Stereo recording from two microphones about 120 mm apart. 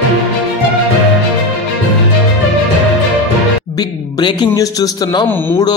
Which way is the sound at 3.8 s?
35° left (ahead or behind).